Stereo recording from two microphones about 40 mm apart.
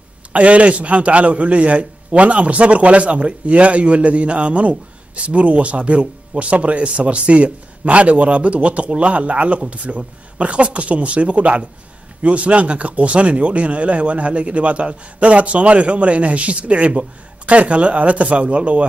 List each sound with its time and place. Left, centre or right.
0.3 s speech: right